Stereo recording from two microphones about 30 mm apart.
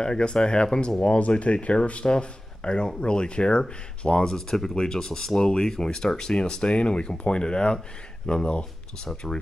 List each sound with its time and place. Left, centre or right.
0.0 s speech: left
2.0 s speech: left